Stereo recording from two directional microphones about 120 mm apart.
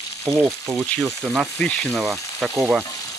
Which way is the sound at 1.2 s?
10° right (ahead or behind).